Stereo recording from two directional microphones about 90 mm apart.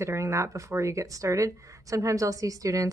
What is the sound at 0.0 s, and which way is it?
Speech, 35° right (ahead or behind).